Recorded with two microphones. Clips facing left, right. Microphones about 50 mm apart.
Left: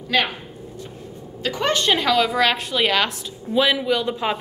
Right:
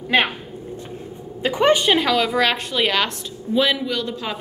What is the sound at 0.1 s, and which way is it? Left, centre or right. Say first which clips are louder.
Speech: right 2 dB; right.